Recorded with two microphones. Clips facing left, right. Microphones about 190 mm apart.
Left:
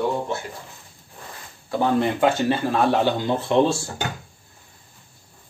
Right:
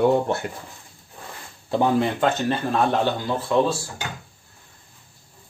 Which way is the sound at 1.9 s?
5° left (ahead or behind).